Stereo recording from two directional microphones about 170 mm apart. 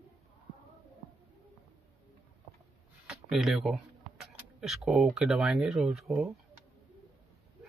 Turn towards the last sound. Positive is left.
turn(degrees=0)  # may be behind; listen again after turning